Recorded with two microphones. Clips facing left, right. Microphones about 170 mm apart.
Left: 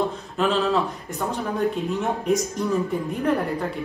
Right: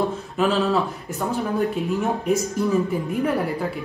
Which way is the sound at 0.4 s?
Centre (ahead or behind).